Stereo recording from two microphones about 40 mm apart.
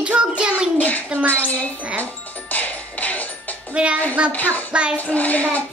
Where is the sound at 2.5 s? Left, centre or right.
Left.